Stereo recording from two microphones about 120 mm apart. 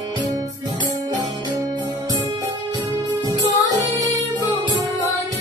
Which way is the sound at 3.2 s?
35° right (ahead or behind).